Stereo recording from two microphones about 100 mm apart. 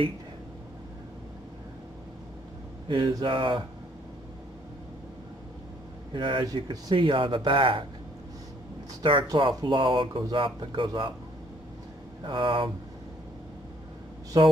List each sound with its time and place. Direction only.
2.9 s speech: 45° right (ahead or behind)
3.3 s speech: 55° right (ahead or behind)
6.1 s speech: 55° right (ahead or behind)
6.4 s speech: 40° right (ahead or behind)
7.0 s speech: 55° right (ahead or behind)
9.0 s speech: 55° right (ahead or behind)
12.3 s speech: 55° right (ahead or behind)
14.3 s speech: 45° right (ahead or behind)